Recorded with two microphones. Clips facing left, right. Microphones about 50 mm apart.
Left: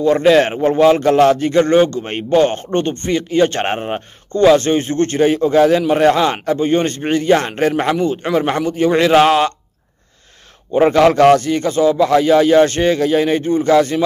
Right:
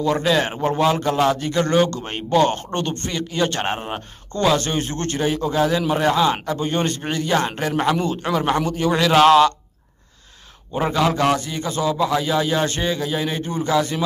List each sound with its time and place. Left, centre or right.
0.0 s a man's voice: left
7.7 s a man's voice: left
10.9 s a man's voice: left
13.7 s speech: left